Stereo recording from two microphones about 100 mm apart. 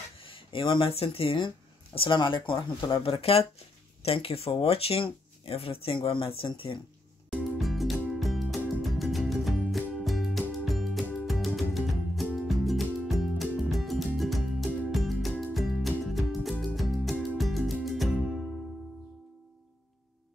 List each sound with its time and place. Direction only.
0.2 s speech: 60° left (ahead or behind)
7.2 s music: centre (ahead or behind)